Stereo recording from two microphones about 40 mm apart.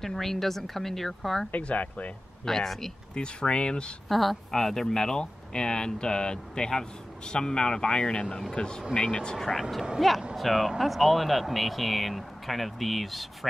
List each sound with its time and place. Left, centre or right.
0.0 s a woman's voice: centre
1.5 s speech: left
2.4 s a woman's voice: centre
3.2 s speech: left
4.1 s a woman's voice: centre; by 9.3 s left
9.3 s speech: centre